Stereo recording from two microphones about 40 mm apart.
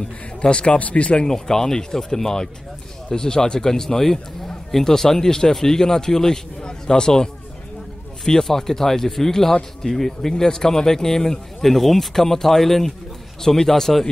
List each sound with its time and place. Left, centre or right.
0.4 s speech: left
1.2 s speech: centre
8.3 s speech: centre